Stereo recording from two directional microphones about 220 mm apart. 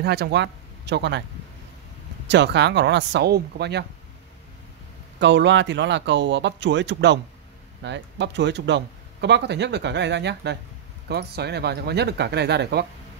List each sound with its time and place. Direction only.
0.0 s speech: 50° right (ahead or behind)
2.2 s speech: 50° right (ahead or behind)
5.2 s speech: 55° right (ahead or behind)